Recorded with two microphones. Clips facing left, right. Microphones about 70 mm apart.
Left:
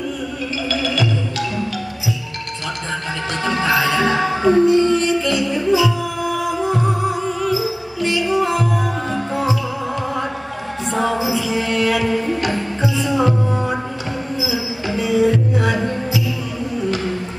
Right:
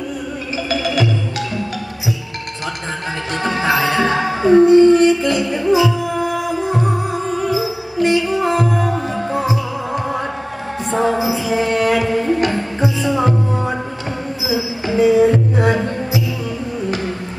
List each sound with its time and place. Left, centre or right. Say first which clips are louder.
0.7 s music: right 3 dB; right
3.4 s music: right 1 dB; right
7.4 s music: right 1 dB; right
10.9 s mantra: right 2 dB; right
12.8 s music: right 1 dB; right
14.9 s music: right 5 dB; right